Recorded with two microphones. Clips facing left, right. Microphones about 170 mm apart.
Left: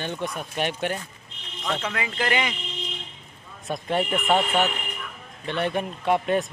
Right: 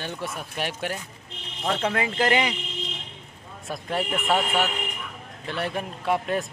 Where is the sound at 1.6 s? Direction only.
35° right (ahead or behind).